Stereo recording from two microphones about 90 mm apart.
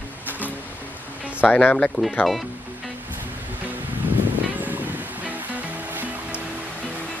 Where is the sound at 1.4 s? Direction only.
20° left (ahead or behind).